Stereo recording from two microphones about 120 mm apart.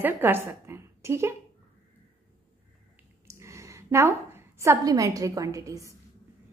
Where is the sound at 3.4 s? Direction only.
25° right (ahead or behind).